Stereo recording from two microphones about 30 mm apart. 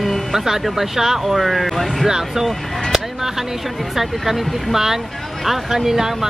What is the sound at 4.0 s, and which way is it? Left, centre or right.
Speech, centre.